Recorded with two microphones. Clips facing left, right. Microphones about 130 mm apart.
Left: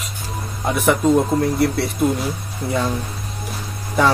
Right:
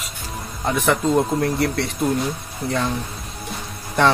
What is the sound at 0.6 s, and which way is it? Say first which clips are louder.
Speech: left 3 dB; 10° left (ahead or behind).